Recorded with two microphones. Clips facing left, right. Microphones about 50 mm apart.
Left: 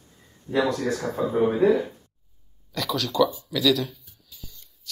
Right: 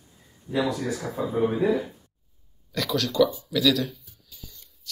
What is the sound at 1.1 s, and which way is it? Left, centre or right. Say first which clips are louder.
Speech: left 2 dB; centre.